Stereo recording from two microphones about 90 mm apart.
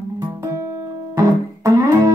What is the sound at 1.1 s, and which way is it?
Music, 40° right (ahead or behind).